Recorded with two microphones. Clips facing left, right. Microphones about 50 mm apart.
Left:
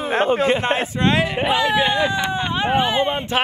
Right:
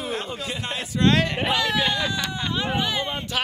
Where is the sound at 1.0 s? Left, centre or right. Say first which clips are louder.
Left 1 dB; centre.